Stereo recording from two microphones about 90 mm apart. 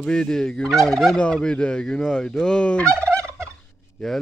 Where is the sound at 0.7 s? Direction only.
5° left (ahead or behind).